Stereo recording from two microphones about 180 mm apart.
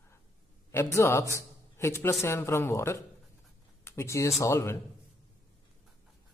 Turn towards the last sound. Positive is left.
turn(degrees=15)  # may be behind; listen again after turning